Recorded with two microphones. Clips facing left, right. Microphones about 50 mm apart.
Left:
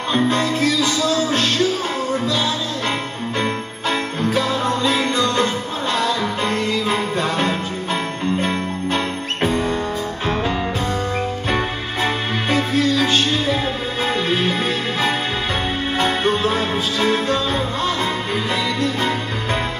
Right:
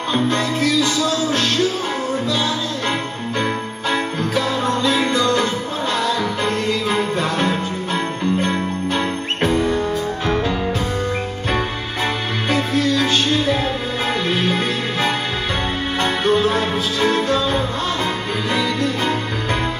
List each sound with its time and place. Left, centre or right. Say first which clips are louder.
0.1 s music: left 1 dB; centre
4.9 s music: right 1 dB; centre
5.2 s music: right 1 dB; centre
6.7 s jingle bell: right 1 dB; centre
9.6 s music: right 2 dB; centre
11.5 s music: right 2 dB; centre
14.3 s music: even; centre
16.0 s music: right 2 dB; centre